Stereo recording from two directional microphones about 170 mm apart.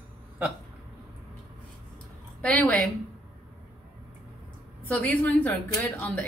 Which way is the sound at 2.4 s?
10° left (ahead or behind).